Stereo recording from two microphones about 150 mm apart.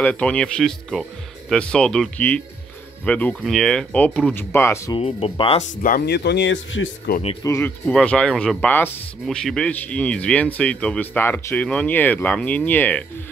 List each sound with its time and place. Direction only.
0.0 s speech: 10° left (ahead or behind)
4.9 s speech: 35° left (ahead or behind)
5.8 s speech: 70° left (ahead or behind); by 7.2 s 90° left
7.4 s speech: 20° left (ahead or behind)
7.8 s speech: 5° left (ahead or behind)